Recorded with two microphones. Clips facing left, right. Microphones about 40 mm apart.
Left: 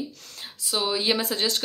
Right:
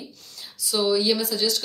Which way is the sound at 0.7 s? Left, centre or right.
Left.